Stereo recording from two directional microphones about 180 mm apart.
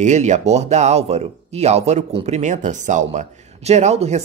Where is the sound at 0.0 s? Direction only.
40° right (ahead or behind).